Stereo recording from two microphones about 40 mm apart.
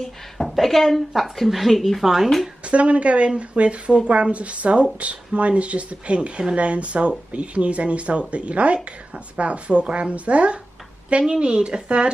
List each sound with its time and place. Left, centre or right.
0.5 s a woman's voice: centre
2.6 s speech: right